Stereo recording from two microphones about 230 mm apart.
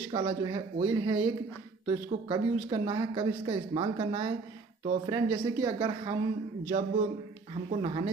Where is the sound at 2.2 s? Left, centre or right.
Centre.